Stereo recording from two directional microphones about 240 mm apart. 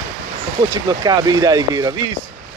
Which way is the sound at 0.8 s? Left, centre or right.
Centre.